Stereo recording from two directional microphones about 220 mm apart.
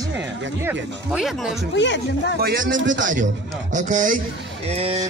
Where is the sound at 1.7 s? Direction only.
55° left (ahead or behind).